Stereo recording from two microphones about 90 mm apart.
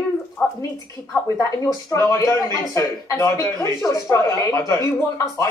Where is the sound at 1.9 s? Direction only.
35° left (ahead or behind).